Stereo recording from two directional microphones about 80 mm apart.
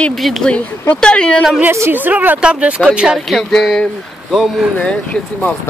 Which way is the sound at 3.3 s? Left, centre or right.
Centre.